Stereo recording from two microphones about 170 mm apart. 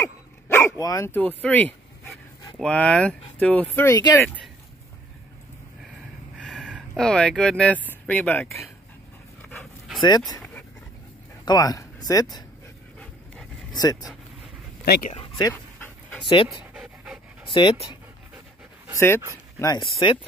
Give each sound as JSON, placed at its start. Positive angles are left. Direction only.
{"t": 0.0, "sound": "dog", "side_deg": 15}
{"t": 2.6, "sound": "speech", "side_deg": 5}
{"t": 6.3, "sound": "speech", "side_deg": 5}
{"t": 9.4, "sound": "dog", "side_deg": 10}
{"t": 10.0, "sound": "speech", "side_deg": 25}
{"t": 11.4, "sound": "speech", "side_deg": 20}
{"t": 14.9, "sound": "speech", "side_deg": 55}
{"t": 15.1, "sound": "a sound", "side_deg": 25}
{"t": 15.5, "sound": "dog", "side_deg": 10}
{"t": 16.4, "sound": "pant", "side_deg": -5}
{"t": 17.6, "sound": "speech", "side_deg": 30}
{"t": 18.9, "sound": "speech", "side_deg": 15}
{"t": 19.6, "sound": "speech", "side_deg": 25}